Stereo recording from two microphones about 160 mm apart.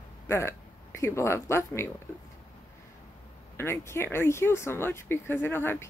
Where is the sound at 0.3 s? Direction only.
15° left (ahead or behind).